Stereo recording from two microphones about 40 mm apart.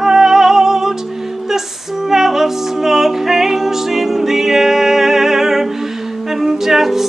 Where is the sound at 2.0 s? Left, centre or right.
Centre.